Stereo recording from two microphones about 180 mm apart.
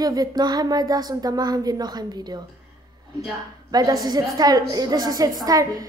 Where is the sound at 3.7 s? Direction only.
20° right (ahead or behind).